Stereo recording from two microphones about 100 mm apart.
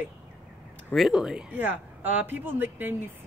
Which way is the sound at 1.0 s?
5° right (ahead or behind).